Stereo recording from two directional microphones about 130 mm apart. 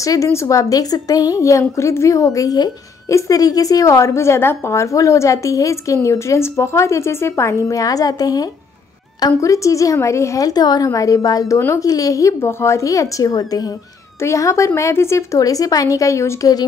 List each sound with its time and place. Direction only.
0.0 s a woman's voice: 25° left (ahead or behind)